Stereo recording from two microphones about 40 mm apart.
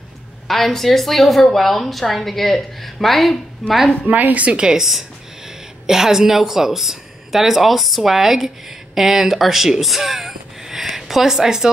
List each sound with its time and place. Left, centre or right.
0.5 s a woman's voice: centre
4.1 s a woman's voice: right
4.5 s speech: centre